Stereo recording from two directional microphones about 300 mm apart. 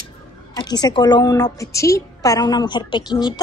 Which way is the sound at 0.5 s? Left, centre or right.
Centre.